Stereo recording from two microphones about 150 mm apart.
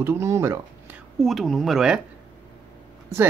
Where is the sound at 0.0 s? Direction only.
15° right (ahead or behind).